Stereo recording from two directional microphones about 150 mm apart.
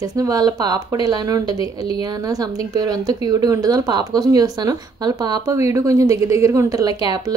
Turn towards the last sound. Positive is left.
turn(degrees=-25)  # may be behind; listen again after turning